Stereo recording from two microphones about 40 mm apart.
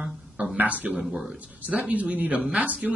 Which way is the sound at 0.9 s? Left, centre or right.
Centre.